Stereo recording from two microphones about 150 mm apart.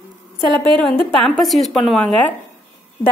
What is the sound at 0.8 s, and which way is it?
A woman's voice, centre (ahead or behind).